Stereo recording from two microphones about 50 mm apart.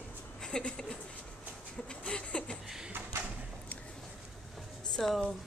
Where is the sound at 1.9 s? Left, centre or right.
Centre.